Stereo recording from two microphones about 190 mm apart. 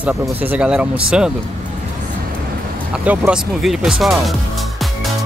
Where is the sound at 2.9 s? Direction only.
5° right (ahead or behind).